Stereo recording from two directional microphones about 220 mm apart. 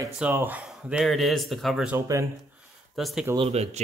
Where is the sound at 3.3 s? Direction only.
25° right (ahead or behind).